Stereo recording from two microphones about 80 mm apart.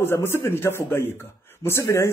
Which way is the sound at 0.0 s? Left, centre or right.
Left.